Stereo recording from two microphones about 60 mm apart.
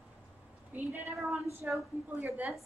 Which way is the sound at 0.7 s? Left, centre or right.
Right.